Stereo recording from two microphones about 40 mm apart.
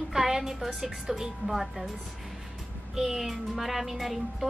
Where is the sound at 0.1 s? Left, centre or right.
Centre.